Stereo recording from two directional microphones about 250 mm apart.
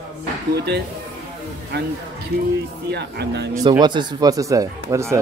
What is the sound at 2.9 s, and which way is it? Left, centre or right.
Speech, right.